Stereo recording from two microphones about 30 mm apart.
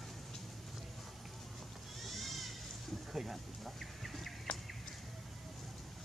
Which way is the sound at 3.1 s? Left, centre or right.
Centre.